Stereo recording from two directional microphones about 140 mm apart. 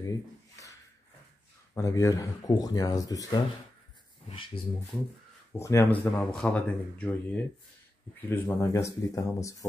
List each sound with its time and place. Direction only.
0.0 s a sound: 25° left (ahead or behind)
1.8 s speech: 25° left (ahead or behind)
5.6 s speech: 20° left (ahead or behind)